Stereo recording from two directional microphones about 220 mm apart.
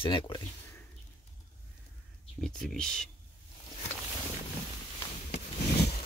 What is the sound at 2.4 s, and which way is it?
Speech, centre (ahead or behind).